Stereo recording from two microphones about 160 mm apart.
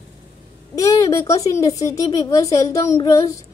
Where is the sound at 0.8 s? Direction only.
20° left (ahead or behind).